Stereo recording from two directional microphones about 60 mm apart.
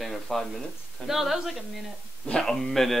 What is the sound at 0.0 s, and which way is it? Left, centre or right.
A woman's voice, centre.